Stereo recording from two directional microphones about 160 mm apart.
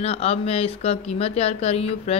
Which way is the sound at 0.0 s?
40° left (ahead or behind).